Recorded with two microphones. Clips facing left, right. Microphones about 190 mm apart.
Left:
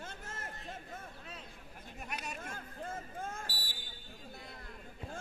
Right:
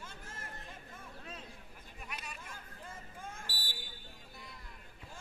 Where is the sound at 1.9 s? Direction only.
45° left (ahead or behind).